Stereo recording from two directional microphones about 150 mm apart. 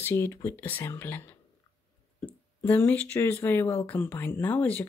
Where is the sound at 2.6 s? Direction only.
15° left (ahead or behind).